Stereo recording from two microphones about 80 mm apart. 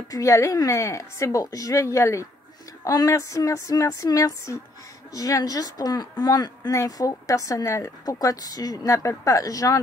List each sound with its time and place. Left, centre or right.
0.1 s speech: left
6.7 s speech: left